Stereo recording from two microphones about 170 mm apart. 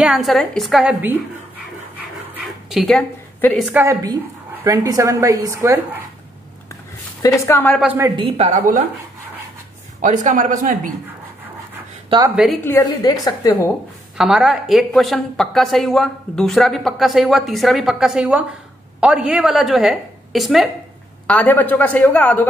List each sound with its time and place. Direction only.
0.0 s a woman's voice: centre (ahead or behind)
2.2 s dog: centre (ahead or behind)
3.5 s a woman's voice: centre (ahead or behind)
3.8 s a woman's voice: 20° right (ahead or behind)
7.2 s a man's voice: 20° left (ahead or behind)
7.8 s a woman's voice: 10° right (ahead or behind)
8.2 s a man's voice: 40° right (ahead or behind)
10.0 s a man's voice: 50° right (ahead or behind)
12.1 s a woman's voice: 35° right (ahead or behind)
12.6 s a woman's voice: 20° left (ahead or behind)
14.1 s a woman's voice: 5° right (ahead or behind)
21.3 s a man's voice: 10° left (ahead or behind)